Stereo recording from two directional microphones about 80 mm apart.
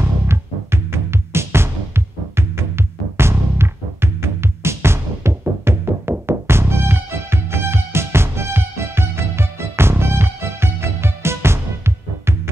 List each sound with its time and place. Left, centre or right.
0.0 s music: right